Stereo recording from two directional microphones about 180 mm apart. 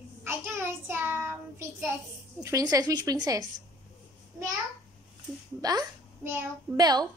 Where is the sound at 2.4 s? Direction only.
20° right (ahead or behind).